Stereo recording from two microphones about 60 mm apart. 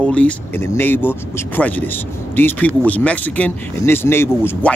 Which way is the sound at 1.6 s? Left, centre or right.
Left.